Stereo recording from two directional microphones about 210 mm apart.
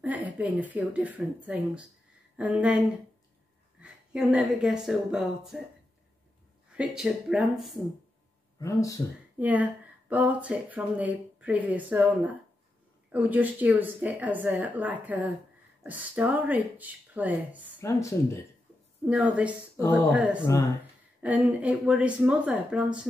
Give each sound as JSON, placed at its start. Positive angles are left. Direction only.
{"t": 0.0, "sound": "speech", "side_deg": -10}
{"t": 3.8, "sound": "speech", "side_deg": -5}
{"t": 6.8, "sound": "speech", "side_deg": -5}
{"t": 8.5, "sound": "speech", "side_deg": 15}
{"t": 9.4, "sound": "speech", "side_deg": -10}
{"t": 17.7, "sound": "speech", "side_deg": 10}
{"t": 19.0, "sound": "speech", "side_deg": -5}